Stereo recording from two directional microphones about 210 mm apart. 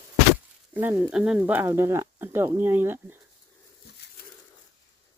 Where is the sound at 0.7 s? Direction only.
5° right (ahead or behind).